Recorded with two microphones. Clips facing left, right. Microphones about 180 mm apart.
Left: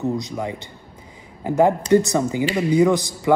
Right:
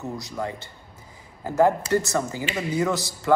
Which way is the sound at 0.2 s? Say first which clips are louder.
Left 3 dB; 15° left (ahead or behind).